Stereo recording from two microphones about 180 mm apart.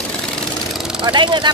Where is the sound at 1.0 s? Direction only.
25° right (ahead or behind).